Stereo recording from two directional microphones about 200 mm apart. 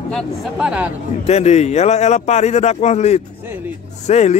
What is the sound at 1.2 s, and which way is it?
Speech, 35° left (ahead or behind).